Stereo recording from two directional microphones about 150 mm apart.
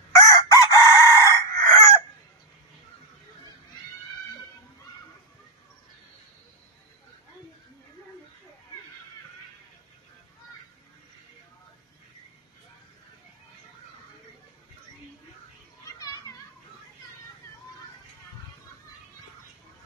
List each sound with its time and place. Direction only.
0.1 s chicken: 20° left (ahead or behind)
16.0 s children playing: 25° left (ahead or behind)